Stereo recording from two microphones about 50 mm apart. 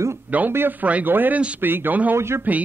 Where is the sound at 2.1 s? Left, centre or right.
Right.